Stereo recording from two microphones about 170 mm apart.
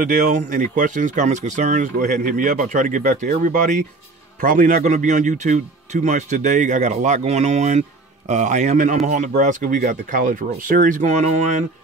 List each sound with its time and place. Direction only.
0.0 s speech: 50° right (ahead or behind)